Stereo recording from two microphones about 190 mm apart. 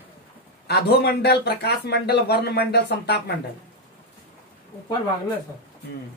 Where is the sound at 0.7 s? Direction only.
60° left (ahead or behind).